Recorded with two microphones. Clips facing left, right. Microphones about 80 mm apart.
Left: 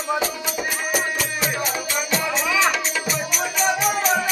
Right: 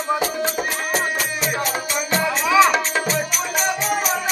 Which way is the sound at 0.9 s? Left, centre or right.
Centre.